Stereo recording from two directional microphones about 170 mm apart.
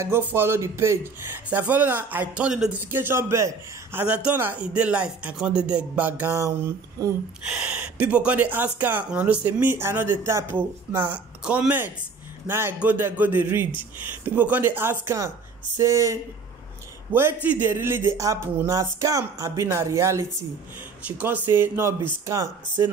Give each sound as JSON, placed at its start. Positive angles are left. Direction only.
{"t": 0.0, "sound": "a man's voice", "side_deg": -15}
{"t": 7.4, "sound": "a man's voice", "side_deg": -5}